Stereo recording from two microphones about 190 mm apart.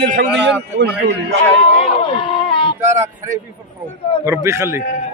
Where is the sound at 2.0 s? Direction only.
25° left (ahead or behind).